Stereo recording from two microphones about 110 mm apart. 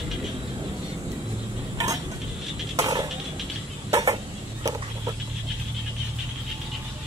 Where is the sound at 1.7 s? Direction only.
30° right (ahead or behind).